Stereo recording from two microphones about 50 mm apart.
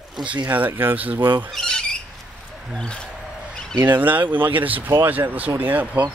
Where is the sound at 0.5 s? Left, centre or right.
Right.